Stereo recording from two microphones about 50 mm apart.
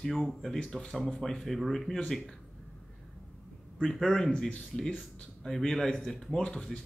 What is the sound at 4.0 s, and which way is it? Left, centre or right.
Speech, centre.